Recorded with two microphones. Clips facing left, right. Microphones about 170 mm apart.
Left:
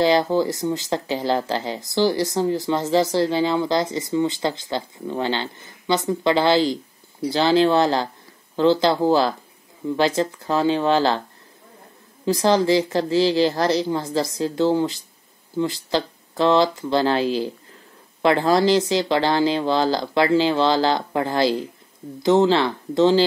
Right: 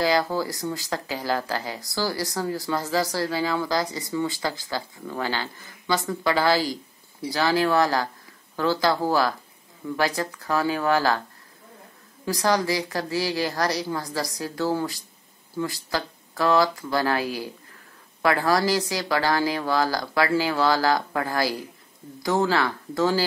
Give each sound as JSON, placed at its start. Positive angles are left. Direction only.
{"t": 0.0, "sound": "speech", "side_deg": 25}
{"t": 12.3, "sound": "speech", "side_deg": 25}